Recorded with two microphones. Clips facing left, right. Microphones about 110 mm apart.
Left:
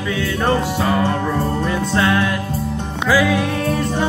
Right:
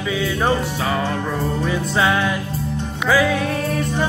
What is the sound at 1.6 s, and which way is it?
Music, 5° right (ahead or behind).